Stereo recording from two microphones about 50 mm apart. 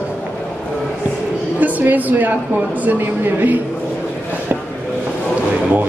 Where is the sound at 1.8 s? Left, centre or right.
Right.